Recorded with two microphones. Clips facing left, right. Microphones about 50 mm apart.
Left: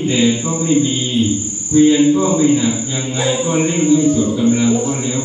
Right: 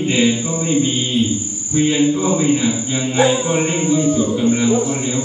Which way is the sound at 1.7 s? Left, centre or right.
Right.